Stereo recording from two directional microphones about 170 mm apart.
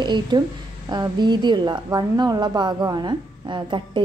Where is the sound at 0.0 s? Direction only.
25° right (ahead or behind).